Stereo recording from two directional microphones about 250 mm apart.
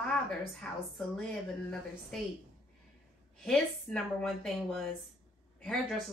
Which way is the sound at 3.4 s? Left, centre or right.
Centre.